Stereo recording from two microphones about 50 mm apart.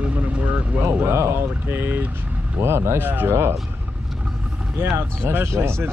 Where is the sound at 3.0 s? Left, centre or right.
Right.